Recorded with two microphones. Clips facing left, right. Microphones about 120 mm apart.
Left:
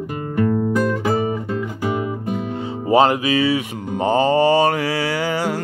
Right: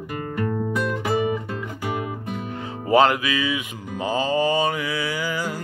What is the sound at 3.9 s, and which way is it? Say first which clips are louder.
Mantra: left 6 dB; 65° left (ahead or behind).